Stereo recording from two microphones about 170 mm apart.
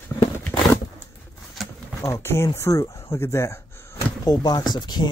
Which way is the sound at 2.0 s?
15° left (ahead or behind).